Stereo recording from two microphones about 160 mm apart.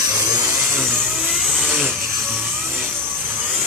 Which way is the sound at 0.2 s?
20° right (ahead or behind).